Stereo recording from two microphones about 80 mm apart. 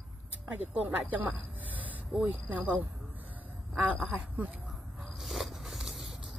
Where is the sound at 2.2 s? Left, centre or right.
Right.